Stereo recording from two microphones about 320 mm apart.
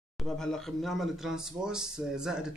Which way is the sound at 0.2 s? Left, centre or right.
Centre.